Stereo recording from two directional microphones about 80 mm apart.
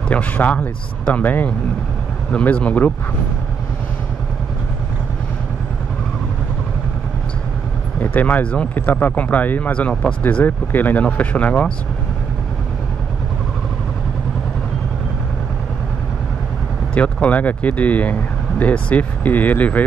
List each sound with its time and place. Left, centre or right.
0.1 s speech: centre
8.0 s speech: left
16.9 s speech: centre